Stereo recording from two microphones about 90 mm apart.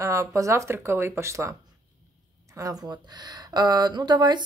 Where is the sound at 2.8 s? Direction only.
50° right (ahead or behind).